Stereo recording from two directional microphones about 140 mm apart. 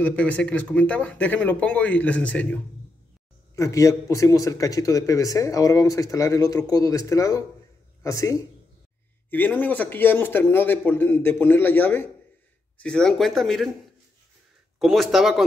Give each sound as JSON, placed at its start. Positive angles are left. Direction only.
{"t": 0.0, "sound": "speech", "side_deg": 10}
{"t": 3.5, "sound": "speech", "side_deg": 20}
{"t": 9.3, "sound": "speech", "side_deg": 15}
{"t": 14.8, "sound": "speech", "side_deg": 0}